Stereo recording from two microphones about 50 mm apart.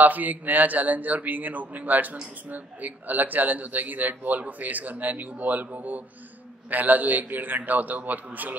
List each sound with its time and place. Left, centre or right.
0.0 s speech: right